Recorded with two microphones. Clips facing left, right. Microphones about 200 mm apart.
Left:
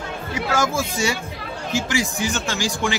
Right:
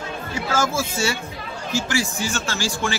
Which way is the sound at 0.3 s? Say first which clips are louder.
Left 1 dB; 15° left (ahead or behind).